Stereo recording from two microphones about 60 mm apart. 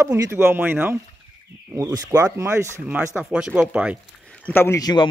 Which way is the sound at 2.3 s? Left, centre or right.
Right.